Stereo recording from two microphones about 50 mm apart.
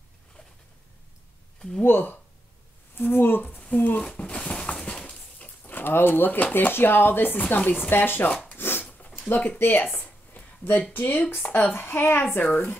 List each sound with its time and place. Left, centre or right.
1.9 s speech: left
3.4 s speech: left
4.2 s a sound: centre
5.7 s speech: left
8.5 s dog: left
9.6 s speech: left
10.0 s a sound: left
10.9 s speech: left
11.7 s speech: left
12.4 s speech: left